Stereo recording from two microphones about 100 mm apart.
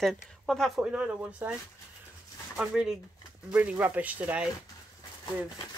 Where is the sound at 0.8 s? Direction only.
10° right (ahead or behind).